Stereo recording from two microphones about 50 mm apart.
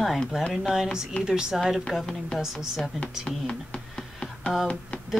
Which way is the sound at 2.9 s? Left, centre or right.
Centre.